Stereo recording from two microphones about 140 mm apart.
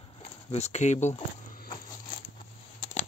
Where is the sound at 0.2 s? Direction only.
50° left (ahead or behind).